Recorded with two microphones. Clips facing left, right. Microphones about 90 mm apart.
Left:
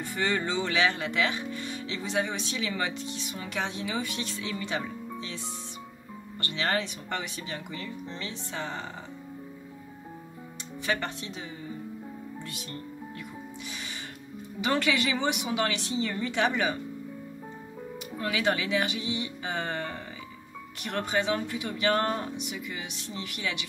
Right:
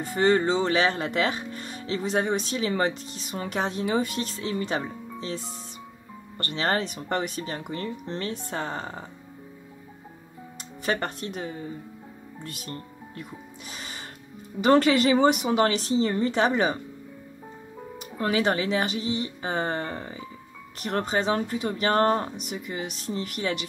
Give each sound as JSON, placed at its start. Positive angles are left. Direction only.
{"t": 0.0, "sound": "speech", "side_deg": -40}
{"t": 10.9, "sound": "speech", "side_deg": -45}
{"t": 14.6, "sound": "speech", "side_deg": -40}
{"t": 18.1, "sound": "speech", "side_deg": -35}